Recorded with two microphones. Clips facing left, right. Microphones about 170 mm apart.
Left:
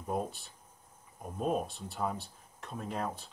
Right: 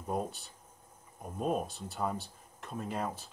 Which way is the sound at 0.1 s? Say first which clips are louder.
Even; centre (ahead or behind).